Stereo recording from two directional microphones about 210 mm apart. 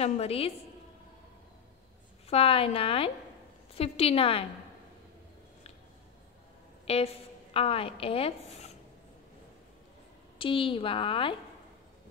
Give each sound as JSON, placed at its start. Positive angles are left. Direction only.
{"t": 0.0, "sound": "a woman's voice", "side_deg": 30}
{"t": 2.2, "sound": "a woman's voice", "side_deg": 25}
{"t": 6.9, "sound": "a woman's voice", "side_deg": 30}
{"t": 10.4, "sound": "a woman's voice", "side_deg": 25}